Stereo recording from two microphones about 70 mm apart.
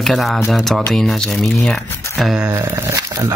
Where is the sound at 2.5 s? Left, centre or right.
Right.